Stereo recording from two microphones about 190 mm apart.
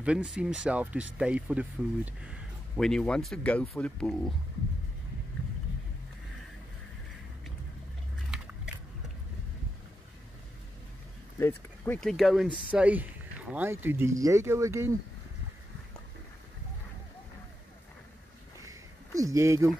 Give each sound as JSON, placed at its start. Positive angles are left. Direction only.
{"t": 0.0, "sound": "speech", "side_deg": -5}
{"t": 11.3, "sound": "speech", "side_deg": 10}
{"t": 18.6, "sound": "a sound", "side_deg": -15}